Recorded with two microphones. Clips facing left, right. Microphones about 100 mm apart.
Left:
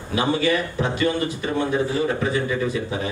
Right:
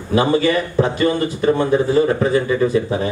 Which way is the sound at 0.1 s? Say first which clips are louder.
Right 5 dB; 40° right (ahead or behind).